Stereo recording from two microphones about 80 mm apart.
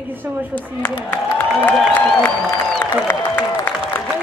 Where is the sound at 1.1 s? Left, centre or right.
Left.